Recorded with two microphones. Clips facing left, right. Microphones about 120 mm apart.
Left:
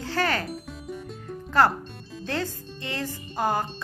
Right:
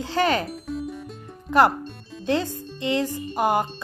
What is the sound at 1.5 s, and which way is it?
Speech, 15° right (ahead or behind).